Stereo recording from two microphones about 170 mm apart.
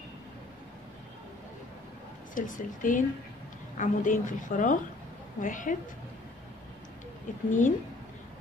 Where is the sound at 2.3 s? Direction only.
50° left (ahead or behind).